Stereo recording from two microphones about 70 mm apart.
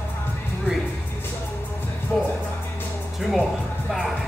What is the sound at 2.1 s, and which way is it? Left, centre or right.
Music, centre.